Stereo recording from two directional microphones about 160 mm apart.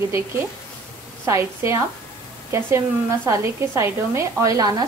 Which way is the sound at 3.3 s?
15° right (ahead or behind).